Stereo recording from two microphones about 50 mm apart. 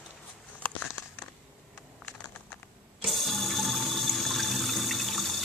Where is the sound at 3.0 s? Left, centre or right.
Centre.